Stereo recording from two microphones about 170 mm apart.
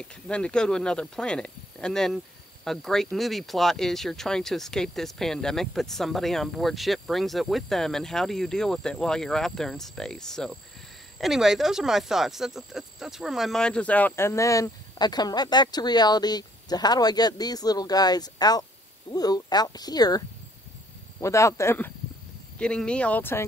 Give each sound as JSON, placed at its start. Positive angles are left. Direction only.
{"t": 0.0, "sound": "speech", "side_deg": 5}